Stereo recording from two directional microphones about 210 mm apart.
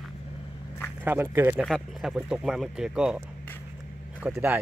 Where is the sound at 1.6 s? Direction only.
Centre (ahead or behind).